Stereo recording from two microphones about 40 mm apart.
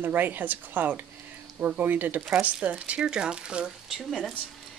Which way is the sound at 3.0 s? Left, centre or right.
Right.